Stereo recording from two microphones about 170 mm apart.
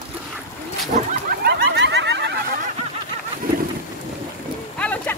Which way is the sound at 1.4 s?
75° right (ahead or behind).